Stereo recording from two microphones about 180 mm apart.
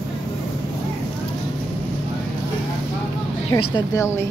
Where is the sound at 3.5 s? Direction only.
20° left (ahead or behind).